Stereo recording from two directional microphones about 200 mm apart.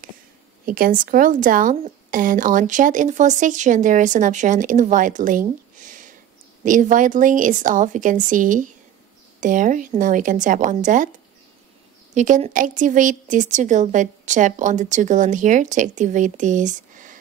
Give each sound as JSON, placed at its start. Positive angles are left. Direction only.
{"t": 0.7, "sound": "speech", "side_deg": -45}
{"t": 5.8, "sound": "a sound", "side_deg": -40}
{"t": 6.6, "sound": "speech", "side_deg": -40}
{"t": 12.1, "sound": "speech", "side_deg": -35}